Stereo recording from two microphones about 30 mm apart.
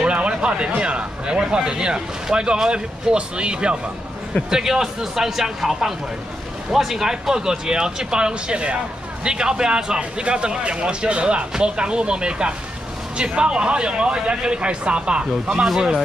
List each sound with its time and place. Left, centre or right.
0.0 s speech: right
4.5 s speech: centre; by 15.6 s right